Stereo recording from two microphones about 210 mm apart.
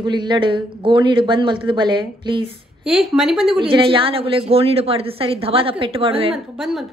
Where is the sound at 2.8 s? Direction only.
Centre (ahead or behind).